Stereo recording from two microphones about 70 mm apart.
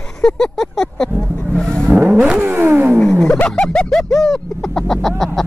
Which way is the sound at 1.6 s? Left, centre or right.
Centre.